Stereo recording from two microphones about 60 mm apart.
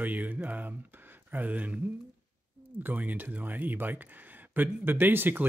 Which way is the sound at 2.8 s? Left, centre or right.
Right.